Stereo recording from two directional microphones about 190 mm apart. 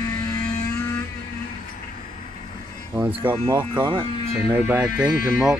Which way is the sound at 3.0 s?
10° right (ahead or behind).